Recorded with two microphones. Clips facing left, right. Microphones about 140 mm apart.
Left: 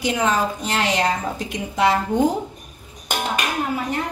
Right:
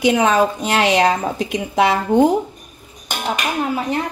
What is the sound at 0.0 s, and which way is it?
A woman's voice, 65° right (ahead or behind).